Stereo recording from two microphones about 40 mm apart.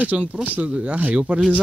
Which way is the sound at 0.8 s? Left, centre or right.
Right.